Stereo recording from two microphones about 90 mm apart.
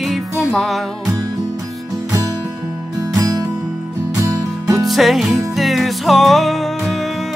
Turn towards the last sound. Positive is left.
turn(degrees=0)  # may be behind; listen again after turning